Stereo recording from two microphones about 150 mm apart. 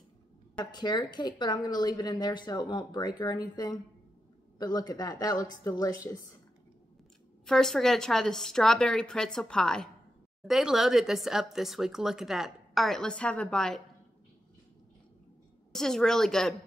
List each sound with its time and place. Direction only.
0.6 s a woman's voice: 30° left (ahead or behind)
7.4 s speech: 5° left (ahead or behind)
15.7 s speech: 5° left (ahead or behind)